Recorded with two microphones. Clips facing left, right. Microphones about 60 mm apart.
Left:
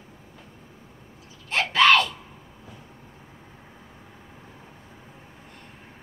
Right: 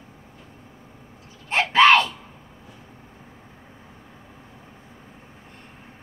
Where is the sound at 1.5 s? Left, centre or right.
Right.